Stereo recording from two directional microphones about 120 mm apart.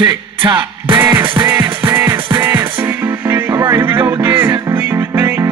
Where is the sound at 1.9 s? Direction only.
20° right (ahead or behind).